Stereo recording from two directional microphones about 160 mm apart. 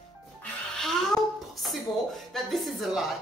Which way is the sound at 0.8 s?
Centre (ahead or behind).